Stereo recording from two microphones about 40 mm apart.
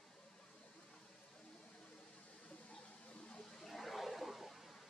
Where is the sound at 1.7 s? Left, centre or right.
Left.